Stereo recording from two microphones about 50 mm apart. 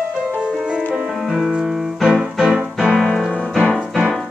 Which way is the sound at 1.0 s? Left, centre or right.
Centre.